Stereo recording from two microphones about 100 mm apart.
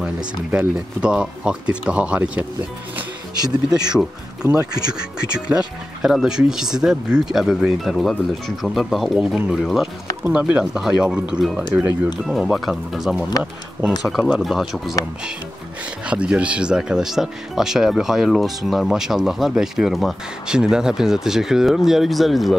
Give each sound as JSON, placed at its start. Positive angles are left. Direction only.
{"t": 0.5, "sound": "speech", "side_deg": -10}
{"t": 3.9, "sound": "speech", "side_deg": -10}
{"t": 13.4, "sound": "speech", "side_deg": -15}
{"t": 14.0, "sound": "speech", "side_deg": 0}
{"t": 16.1, "sound": "speech", "side_deg": -10}